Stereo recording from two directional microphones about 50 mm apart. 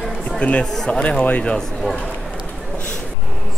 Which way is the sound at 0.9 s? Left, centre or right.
Centre.